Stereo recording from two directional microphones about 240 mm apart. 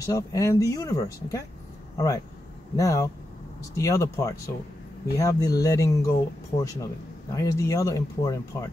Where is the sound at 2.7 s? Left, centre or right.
Centre.